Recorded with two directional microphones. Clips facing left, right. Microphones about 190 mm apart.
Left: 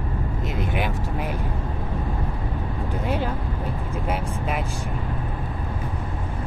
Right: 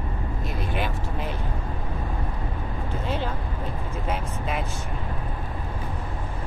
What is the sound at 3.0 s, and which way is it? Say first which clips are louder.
Speech: left 3 dB; 10° left (ahead or behind).